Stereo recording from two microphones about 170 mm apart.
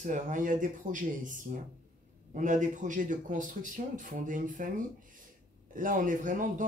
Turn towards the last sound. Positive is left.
turn(degrees=-50)  # may be behind; listen again after turning